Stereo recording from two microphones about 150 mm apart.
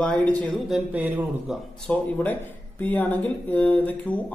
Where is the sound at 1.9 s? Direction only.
10° left (ahead or behind).